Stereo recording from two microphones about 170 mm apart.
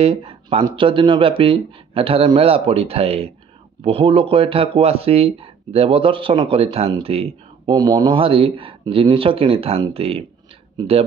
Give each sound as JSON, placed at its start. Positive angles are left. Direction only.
{"t": 0.0, "sound": "speech", "side_deg": -35}
{"t": 7.7, "sound": "speech", "side_deg": -20}